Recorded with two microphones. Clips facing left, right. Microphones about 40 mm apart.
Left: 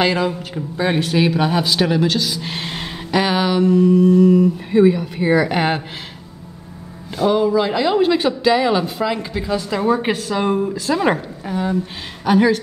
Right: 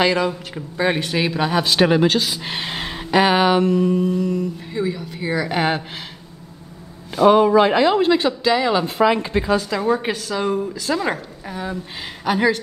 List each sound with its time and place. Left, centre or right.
0.0 s speech: centre
1.7 s speech: right
3.3 s speech: right
4.2 s speech: centre
4.6 s speech: left
4.9 s speech: centre
7.2 s speech: right
7.7 s speech: centre
9.0 s speech: centre
9.6 s speech: centre
11.4 s speech: centre